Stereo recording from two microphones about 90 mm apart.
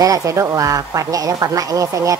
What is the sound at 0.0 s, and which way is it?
A woman's voice, 40° right (ahead or behind).